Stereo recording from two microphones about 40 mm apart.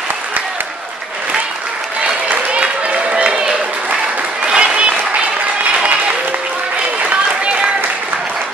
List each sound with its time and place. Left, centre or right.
2.2 s a sound: right
4.6 s applause: right
7.1 s applause: right